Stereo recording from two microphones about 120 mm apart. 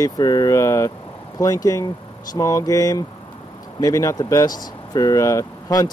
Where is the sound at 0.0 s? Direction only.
30° left (ahead or behind).